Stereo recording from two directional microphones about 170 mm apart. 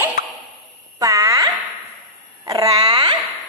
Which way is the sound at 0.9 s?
20° right (ahead or behind).